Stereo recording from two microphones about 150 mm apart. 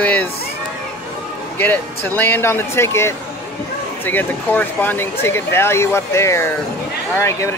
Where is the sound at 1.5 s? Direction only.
15° left (ahead or behind).